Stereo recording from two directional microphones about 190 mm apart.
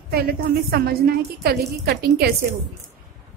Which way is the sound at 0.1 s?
55° right (ahead or behind).